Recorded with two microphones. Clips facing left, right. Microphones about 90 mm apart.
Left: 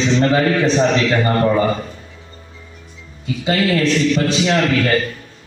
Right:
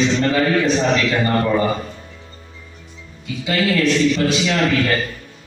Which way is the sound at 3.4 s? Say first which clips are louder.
Left 1 dB; 35° left (ahead or behind).